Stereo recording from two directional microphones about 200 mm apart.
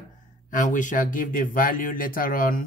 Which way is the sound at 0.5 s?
40° left (ahead or behind).